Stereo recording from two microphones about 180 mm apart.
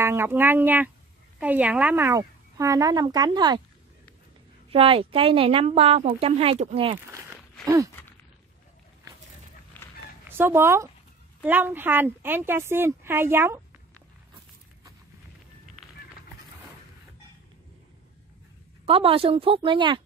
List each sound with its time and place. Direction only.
0.0 s a woman's voice: 15° right (ahead or behind)
4.6 s speech: 30° right (ahead or behind)
7.1 s a woman's voice: 15° right (ahead or behind)
9.8 s a sound: 10° left (ahead or behind)
10.3 s a woman's voice: 15° right (ahead or behind)
18.9 s speech: 30° right (ahead or behind)